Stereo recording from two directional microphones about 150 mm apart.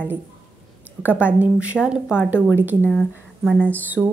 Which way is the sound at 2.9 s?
5° left (ahead or behind).